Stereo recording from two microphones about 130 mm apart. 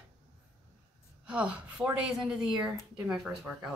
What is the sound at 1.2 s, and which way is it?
A woman's voice, 10° right (ahead or behind).